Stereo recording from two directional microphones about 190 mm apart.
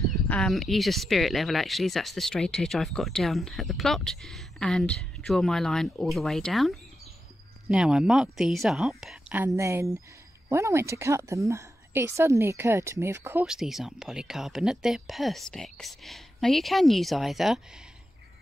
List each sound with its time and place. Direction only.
0.3 s a woman's voice: centre (ahead or behind)